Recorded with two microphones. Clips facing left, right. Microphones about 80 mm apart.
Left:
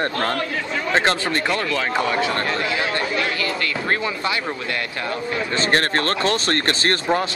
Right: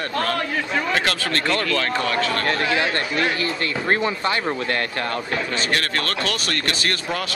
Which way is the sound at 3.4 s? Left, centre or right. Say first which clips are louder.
Even; right.